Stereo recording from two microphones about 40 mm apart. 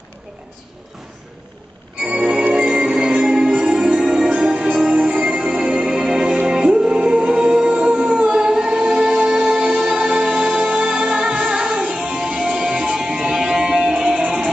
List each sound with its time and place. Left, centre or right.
2.0 s music: right